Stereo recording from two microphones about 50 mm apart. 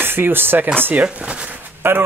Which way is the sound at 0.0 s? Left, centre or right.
Right.